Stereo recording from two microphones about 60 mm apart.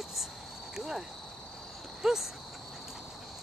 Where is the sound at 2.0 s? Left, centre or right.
Centre.